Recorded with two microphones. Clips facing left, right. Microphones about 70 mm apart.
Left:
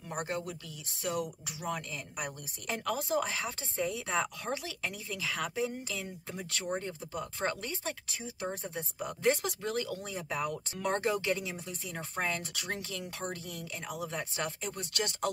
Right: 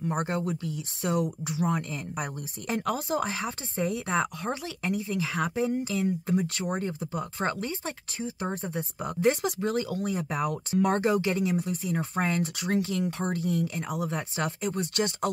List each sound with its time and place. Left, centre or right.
0.1 s a woman's voice: right